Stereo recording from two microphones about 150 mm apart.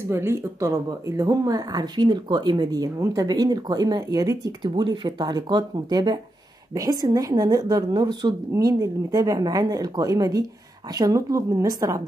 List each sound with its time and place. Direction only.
0.1 s speech: 15° right (ahead or behind)